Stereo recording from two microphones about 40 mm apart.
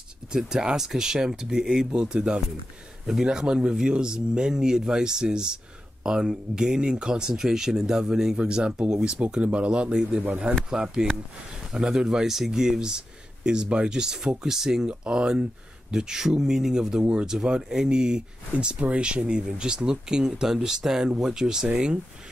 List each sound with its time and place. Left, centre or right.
0.3 s speech: centre
9.2 s speech: right; by 14.9 s centre
14.9 s speech: right